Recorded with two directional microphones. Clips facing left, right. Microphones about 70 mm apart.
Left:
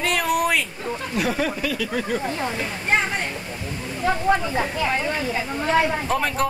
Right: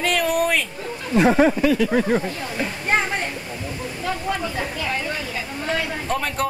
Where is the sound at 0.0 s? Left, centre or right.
Centre.